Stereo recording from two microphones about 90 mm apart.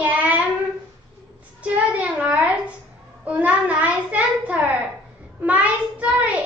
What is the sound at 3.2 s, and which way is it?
Child singing, 15° right (ahead or behind).